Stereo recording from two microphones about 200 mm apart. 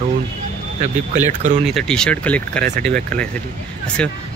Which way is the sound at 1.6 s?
Centre (ahead or behind).